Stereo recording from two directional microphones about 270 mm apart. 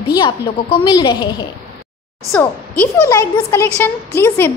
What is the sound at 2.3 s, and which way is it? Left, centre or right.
A child's voice, centre.